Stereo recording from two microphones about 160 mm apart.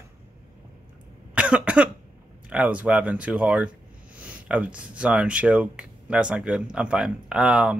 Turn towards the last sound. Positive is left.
turn(degrees=-5)  # may be behind; listen again after turning